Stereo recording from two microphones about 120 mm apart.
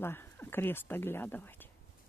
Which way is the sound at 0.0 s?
20° left (ahead or behind).